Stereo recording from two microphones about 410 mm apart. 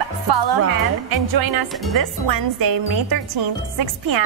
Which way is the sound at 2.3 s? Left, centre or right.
Right.